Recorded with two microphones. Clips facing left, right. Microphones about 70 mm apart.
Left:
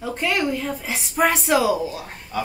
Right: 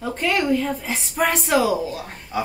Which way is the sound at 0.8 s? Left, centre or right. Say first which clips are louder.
Left 2 dB; centre.